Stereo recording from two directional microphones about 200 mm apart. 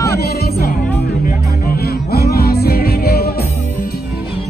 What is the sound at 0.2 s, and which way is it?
Music, 50° left (ahead or behind).